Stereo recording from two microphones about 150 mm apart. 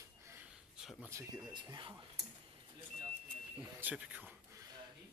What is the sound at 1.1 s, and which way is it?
Speech, 20° right (ahead or behind).